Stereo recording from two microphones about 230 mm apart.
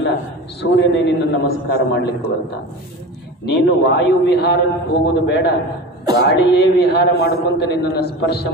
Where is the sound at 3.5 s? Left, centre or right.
Left.